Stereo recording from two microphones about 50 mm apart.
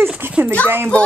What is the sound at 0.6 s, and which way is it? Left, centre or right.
Speech, right.